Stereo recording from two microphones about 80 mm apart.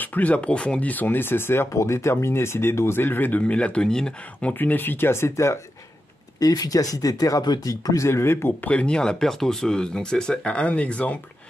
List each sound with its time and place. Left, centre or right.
0.0 s speech: left
6.4 s speech: left; by 11.1 s centre